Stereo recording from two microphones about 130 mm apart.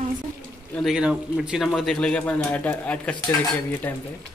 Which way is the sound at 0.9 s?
5° right (ahead or behind).